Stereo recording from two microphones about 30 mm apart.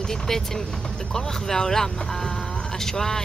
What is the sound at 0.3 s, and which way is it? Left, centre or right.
Speech, centre.